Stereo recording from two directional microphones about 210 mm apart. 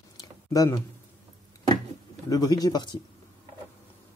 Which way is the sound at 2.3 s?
20° left (ahead or behind).